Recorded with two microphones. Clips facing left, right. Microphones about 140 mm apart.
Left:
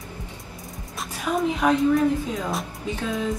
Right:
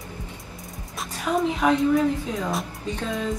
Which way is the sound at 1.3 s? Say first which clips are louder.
Even; centre (ahead or behind).